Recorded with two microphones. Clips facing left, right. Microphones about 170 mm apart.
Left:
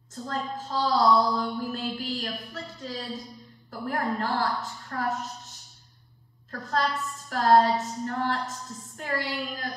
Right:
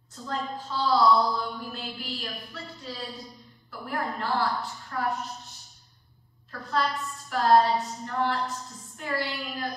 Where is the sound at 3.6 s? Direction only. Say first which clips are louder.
Left 3 dB; 45° left (ahead or behind).